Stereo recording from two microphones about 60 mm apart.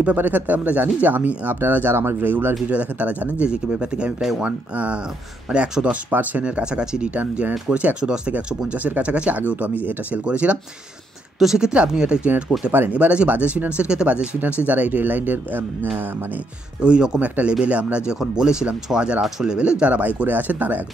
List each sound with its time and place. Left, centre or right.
0.0 s speech: right
2.7 s speech: right
7.2 s speech: right
11.3 s speech: centre; by 15.9 s right
16.8 s speech: centre